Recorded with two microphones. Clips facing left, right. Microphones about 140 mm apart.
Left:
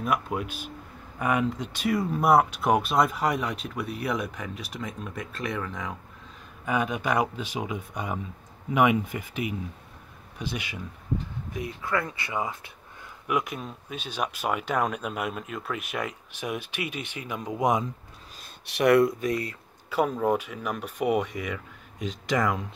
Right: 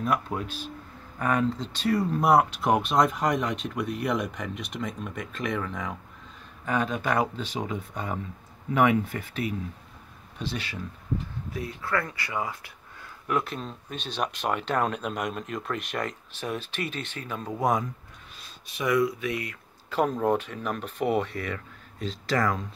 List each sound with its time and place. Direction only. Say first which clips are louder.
0.0 s speech: even; 10° left (ahead or behind)
6.6 s speech: even; 10° left (ahead or behind)
18.7 s speech: left 5 dB; 70° left (ahead or behind)
19.1 s speech: left 3 dB; 40° left (ahead or behind)
19.9 s speech: even; 10° left (ahead or behind)